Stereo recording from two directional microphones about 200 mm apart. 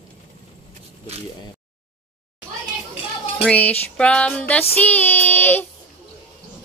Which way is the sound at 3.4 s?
5° left (ahead or behind).